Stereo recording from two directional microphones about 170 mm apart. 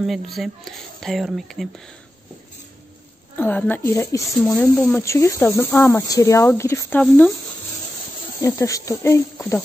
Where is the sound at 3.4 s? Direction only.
10° left (ahead or behind).